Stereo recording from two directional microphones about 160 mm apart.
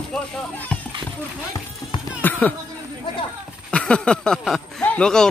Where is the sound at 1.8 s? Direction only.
25° left (ahead or behind).